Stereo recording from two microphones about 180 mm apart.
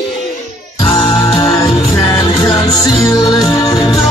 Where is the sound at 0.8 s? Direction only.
25° left (ahead or behind).